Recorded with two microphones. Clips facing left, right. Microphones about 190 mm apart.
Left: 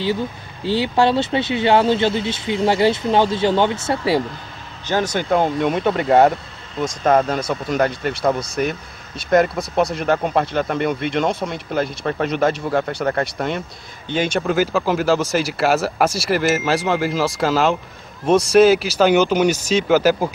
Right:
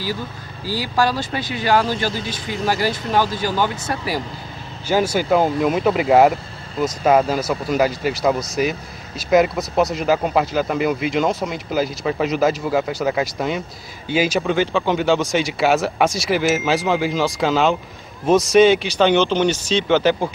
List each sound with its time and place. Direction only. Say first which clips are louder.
0.7 s speech: left 4 dB; 25° left (ahead or behind)
4.8 s speech: right 2 dB; 10° right (ahead or behind)